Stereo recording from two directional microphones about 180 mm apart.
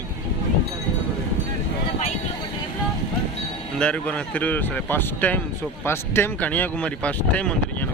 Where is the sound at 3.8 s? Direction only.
5° left (ahead or behind).